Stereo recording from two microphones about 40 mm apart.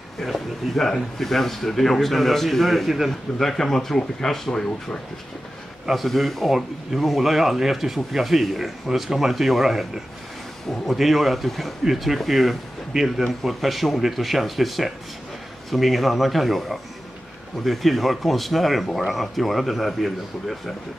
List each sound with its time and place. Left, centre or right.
0.2 s speech: centre
5.9 s speech: centre